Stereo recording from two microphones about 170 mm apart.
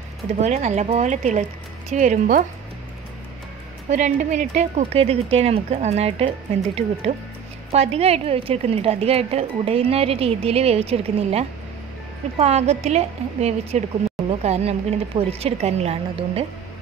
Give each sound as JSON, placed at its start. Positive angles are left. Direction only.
{"t": 0.4, "sound": "speech", "side_deg": -40}
{"t": 3.9, "sound": "speech", "side_deg": -45}